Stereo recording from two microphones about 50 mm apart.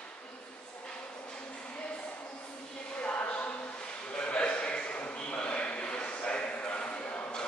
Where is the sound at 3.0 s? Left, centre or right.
Left.